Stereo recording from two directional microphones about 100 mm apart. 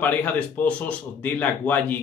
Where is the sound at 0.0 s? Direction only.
15° left (ahead or behind).